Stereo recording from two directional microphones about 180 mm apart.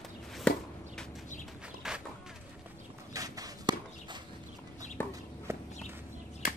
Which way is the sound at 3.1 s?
20° right (ahead or behind).